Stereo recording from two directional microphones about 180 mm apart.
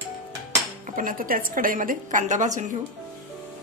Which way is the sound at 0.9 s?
50° right (ahead or behind).